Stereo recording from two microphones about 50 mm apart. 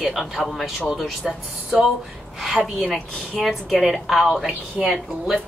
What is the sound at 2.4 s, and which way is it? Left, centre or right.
Speech, centre.